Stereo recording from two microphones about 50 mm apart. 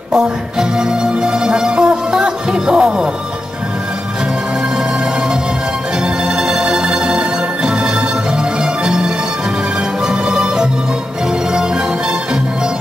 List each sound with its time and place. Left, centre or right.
0.1 s music: centre
6.2 s music: centre